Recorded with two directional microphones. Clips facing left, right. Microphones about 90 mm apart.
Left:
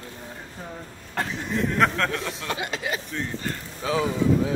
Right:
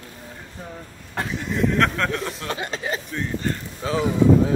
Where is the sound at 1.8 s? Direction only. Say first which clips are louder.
Right 1 dB; centre (ahead or behind).